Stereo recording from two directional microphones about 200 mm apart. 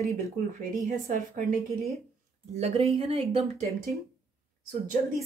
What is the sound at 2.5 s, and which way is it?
Speech, 30° right (ahead or behind).